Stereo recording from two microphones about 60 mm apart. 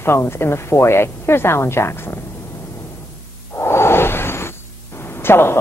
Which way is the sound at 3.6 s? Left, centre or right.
Left.